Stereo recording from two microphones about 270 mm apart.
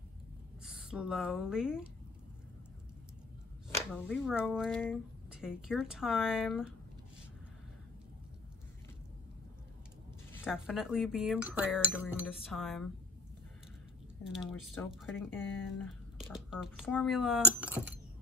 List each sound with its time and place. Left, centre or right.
0.7 s speech: centre
3.6 s speech: centre
4.5 s cutlery: centre
10.4 s cutlery: centre
14.2 s cutlery: centre
16.3 s cutlery: centre